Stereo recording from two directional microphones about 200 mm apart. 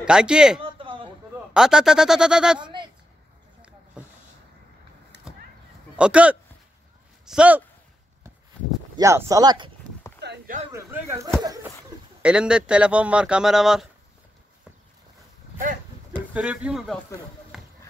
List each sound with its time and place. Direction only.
0.0 s speech: 5° right (ahead or behind)
0.6 s a sound: 25° right (ahead or behind)
1.5 s speech: 5° right (ahead or behind)
2.6 s speech: 25° right (ahead or behind)
5.3 s a sound: 5° right (ahead or behind)
5.9 s speech: 5° right (ahead or behind)
8.9 s speech: 15° right (ahead or behind)
10.2 s a sound: 60° right (ahead or behind)
10.7 s speech: 15° right (ahead or behind)
11.4 s a sound: 15° right (ahead or behind)
12.2 s speech: 5° right (ahead or behind)
16.3 s speech: 5° right (ahead or behind)
17.5 s basketball bounce: centre (ahead or behind)